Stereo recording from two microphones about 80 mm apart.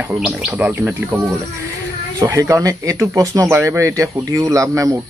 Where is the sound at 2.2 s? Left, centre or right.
Right.